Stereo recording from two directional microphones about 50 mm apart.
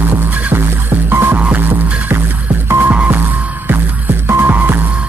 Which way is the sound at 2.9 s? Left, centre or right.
Right.